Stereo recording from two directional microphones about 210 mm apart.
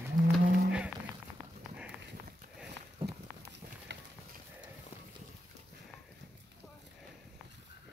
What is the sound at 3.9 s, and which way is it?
Horse, 55° right (ahead or behind).